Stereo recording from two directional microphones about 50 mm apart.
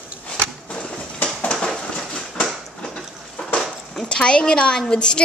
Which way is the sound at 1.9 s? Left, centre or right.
Centre.